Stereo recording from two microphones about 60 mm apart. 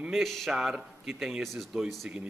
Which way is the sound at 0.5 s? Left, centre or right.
Centre.